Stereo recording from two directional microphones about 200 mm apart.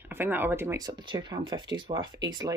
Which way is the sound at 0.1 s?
10° right (ahead or behind).